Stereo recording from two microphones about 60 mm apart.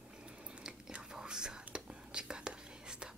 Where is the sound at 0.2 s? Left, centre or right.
Centre.